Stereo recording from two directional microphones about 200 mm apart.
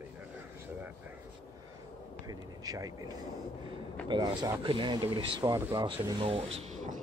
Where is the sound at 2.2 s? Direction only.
20° right (ahead or behind).